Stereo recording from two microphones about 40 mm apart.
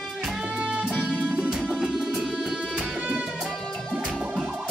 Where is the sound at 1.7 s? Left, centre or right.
Centre.